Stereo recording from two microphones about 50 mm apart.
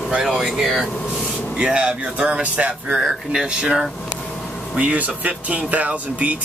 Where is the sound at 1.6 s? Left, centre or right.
Centre.